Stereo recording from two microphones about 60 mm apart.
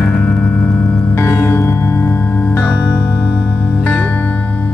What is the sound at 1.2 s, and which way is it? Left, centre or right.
Music, left.